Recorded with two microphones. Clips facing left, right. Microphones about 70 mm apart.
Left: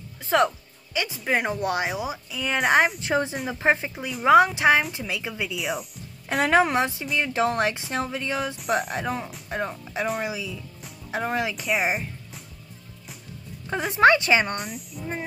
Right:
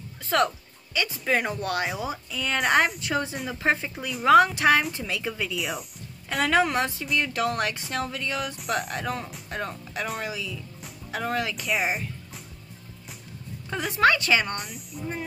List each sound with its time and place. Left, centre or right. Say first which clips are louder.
0.3 s a woman's voice: left 2 dB; centre
3.0 s a woman's voice: left 3 dB; left
5.6 s speech: left 2 dB; centre
6.4 s a woman's voice: left 2 dB; left
8.6 s speech: left 4 dB; centre
8.9 s a woman's voice: left 2 dB; centre
11.5 s speech: left 2 dB; centre
13.7 s a woman's voice: left 4 dB; left
14.6 s speech: left 3 dB; centre